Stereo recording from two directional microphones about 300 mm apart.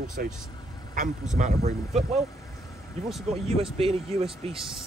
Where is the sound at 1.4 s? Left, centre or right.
Right.